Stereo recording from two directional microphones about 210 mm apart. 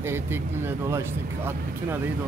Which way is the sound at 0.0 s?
10° right (ahead or behind).